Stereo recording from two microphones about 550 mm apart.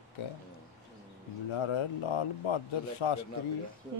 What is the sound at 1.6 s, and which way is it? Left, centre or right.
Speech, left.